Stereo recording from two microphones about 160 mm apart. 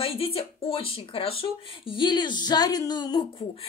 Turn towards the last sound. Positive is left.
turn(degrees=25)  # may be behind; listen again after turning